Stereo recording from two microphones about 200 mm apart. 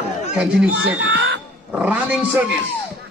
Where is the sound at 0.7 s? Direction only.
65° right (ahead or behind).